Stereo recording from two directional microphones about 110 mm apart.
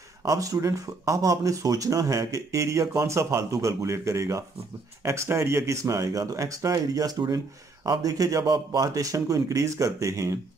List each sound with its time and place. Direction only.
0.2 s speech: 30° right (ahead or behind)